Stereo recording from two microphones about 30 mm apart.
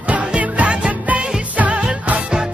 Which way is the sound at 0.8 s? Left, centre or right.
Right.